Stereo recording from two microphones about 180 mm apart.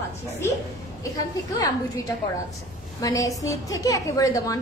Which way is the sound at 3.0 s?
20° left (ahead or behind).